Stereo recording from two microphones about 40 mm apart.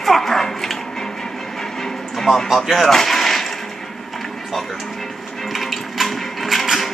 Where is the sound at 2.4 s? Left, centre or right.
Centre.